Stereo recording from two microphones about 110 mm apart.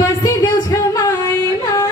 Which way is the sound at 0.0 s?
30° left (ahead or behind).